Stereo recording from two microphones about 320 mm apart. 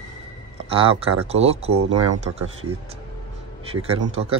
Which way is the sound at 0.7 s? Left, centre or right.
Centre.